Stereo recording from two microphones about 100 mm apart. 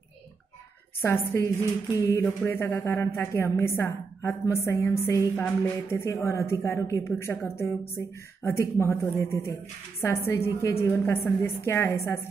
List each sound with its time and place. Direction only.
1.0 s a woman's voice: 25° left (ahead or behind)
2.0 s a sound: 30° left (ahead or behind)
2.2 s a woman's voice: 20° left (ahead or behind)